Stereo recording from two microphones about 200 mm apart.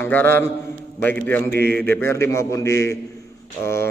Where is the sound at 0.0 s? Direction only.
10° left (ahead or behind).